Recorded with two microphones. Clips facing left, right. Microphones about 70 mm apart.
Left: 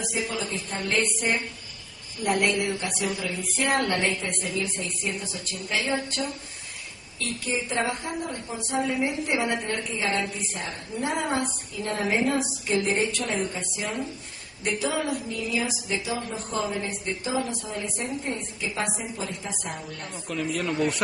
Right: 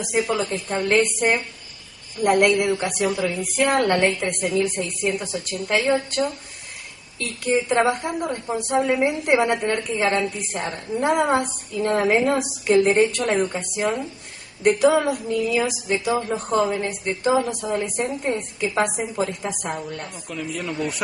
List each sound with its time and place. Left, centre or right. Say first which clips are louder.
0.0 s a woman's voice: right 7 dB; right
18.9 s a woman's voice: right 8 dB; right
20.2 s speech: left 2 dB; centre